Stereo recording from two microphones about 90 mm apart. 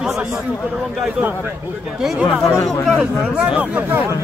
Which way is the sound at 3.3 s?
10° right (ahead or behind).